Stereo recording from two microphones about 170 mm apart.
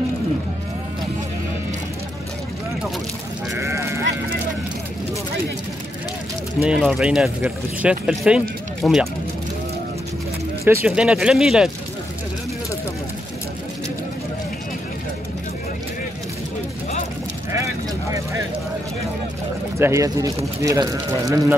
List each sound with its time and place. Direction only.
3.5 s sheep: 15° right (ahead or behind)
6.6 s speech: 5° right (ahead or behind)
10.6 s speech: 15° right (ahead or behind)
19.8 s speech: 15° right (ahead or behind)